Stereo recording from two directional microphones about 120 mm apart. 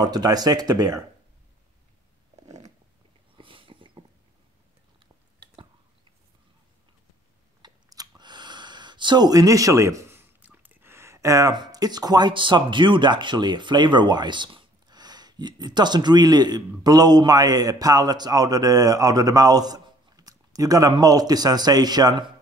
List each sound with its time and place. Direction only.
0.0 s speech: 35° right (ahead or behind)
3.3 s a sound: 45° right (ahead or behind)
7.6 s speech: 35° right (ahead or behind)